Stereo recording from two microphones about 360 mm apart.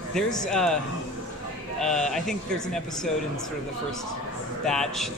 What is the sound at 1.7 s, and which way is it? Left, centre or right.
Speech, centre.